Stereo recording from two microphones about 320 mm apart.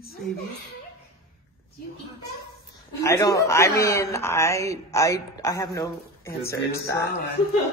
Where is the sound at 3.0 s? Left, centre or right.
Centre.